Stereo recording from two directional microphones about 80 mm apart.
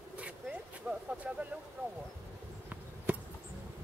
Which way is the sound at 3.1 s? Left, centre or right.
Centre.